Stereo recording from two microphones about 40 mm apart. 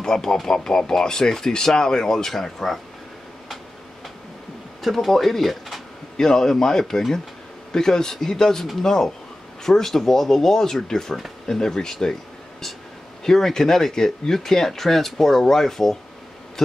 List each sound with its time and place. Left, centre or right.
0.0 s speech: centre
4.8 s speech: centre
13.2 s speech: centre